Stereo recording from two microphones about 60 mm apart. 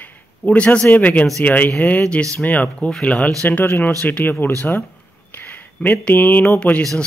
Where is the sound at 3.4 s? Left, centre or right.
Left.